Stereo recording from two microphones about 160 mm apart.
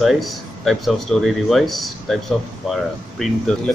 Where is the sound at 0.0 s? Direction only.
Centre (ahead or behind).